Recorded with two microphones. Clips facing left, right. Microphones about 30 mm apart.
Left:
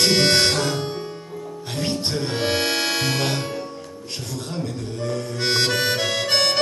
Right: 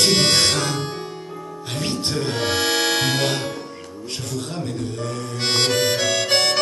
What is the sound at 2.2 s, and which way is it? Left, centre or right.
Music, centre.